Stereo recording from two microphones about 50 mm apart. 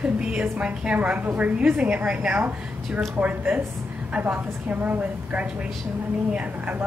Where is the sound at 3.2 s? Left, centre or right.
Right.